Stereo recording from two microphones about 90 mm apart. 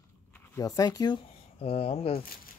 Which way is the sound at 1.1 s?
90° left.